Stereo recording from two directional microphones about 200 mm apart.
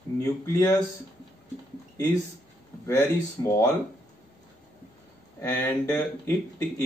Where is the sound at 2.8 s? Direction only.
15° left (ahead or behind).